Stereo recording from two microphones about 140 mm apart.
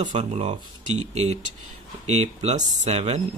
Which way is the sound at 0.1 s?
50° right (ahead or behind).